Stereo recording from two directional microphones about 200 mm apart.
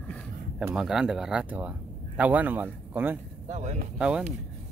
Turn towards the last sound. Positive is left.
turn(degrees=-5)  # may be behind; listen again after turning